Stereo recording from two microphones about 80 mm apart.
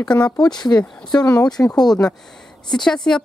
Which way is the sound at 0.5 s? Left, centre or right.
Left.